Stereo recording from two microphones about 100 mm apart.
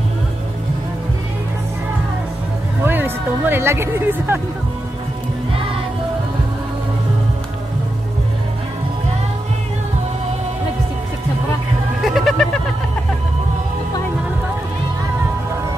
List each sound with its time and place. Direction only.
2.8 s speech: 20° right (ahead or behind)
12.0 s cat: centre (ahead or behind)